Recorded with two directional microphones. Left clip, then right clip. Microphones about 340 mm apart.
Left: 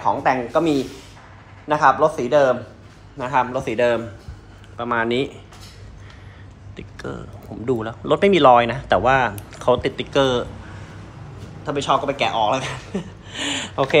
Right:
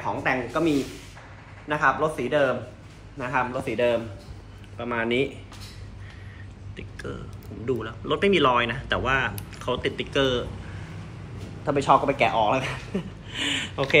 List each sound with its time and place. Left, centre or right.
0.0 s speech: centre
5.0 s speech: left
7.6 s speech: centre
11.8 s speech: centre